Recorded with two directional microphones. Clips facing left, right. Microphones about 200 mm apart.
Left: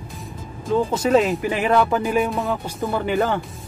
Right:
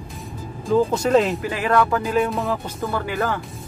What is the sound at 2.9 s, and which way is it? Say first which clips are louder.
Speech: left 4 dB; 20° left (ahead or behind).